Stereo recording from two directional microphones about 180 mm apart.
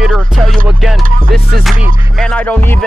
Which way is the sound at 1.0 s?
50° right (ahead or behind).